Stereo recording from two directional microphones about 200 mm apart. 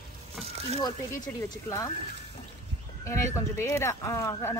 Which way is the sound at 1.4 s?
15° left (ahead or behind).